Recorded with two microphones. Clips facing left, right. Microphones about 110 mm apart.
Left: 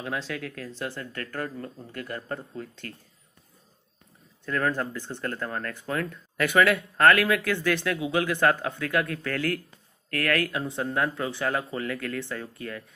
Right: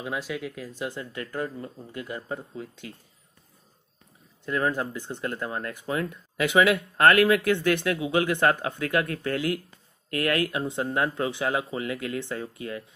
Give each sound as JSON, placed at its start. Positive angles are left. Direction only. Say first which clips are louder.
{"t": 0.0, "sound": "speech", "louder": "right 1 dB", "side_deg": -10}
{"t": 4.5, "sound": "speech", "louder": "right 1 dB", "side_deg": -15}
{"t": 7.2, "sound": "speech", "louder": "right 4 dB", "side_deg": -25}